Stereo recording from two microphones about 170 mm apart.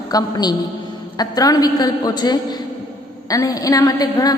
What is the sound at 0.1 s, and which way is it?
A woman's voice, 25° left (ahead or behind).